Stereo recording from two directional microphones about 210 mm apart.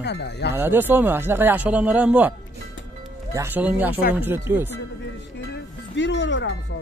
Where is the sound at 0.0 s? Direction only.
55° left (ahead or behind).